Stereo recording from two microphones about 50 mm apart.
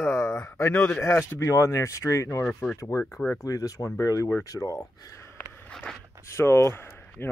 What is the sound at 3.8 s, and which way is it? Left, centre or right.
Speech, left.